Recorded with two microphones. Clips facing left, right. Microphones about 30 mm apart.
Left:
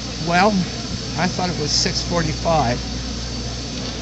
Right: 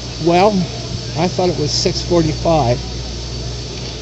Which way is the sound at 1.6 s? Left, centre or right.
Right.